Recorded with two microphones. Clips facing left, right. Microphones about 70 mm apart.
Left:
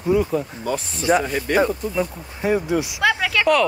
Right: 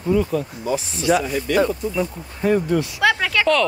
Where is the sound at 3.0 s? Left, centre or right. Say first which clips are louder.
Even; centre.